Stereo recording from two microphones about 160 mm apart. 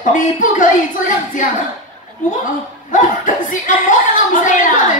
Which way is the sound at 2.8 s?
50° left (ahead or behind).